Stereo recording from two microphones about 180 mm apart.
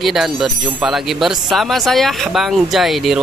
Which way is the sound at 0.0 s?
Centre (ahead or behind).